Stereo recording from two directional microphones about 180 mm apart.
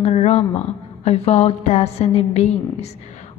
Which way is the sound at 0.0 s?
35° left (ahead or behind).